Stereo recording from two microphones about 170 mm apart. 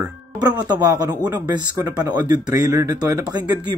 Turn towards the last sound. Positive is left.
turn(degrees=-20)  # may be behind; listen again after turning